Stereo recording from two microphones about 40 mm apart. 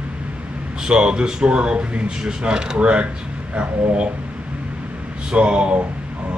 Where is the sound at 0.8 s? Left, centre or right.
Right.